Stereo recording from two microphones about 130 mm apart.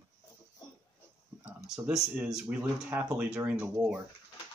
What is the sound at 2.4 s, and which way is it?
Speech, 20° right (ahead or behind).